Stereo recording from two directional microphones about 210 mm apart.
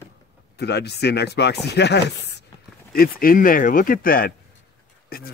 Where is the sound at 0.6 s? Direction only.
50° left (ahead or behind).